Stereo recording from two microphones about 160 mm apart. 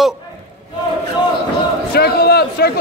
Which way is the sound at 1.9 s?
75° left (ahead or behind).